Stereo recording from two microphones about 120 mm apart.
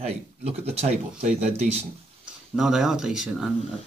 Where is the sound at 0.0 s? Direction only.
65° right (ahead or behind).